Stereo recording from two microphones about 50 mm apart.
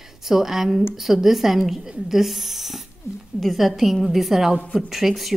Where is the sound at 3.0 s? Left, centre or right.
Left.